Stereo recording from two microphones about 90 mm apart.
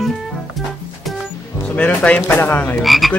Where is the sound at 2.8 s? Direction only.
Centre (ahead or behind).